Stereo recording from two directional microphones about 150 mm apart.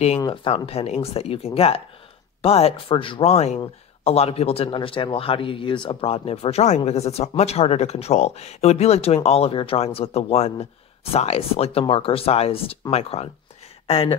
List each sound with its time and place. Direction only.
0.3 s speech: 40° left (ahead or behind)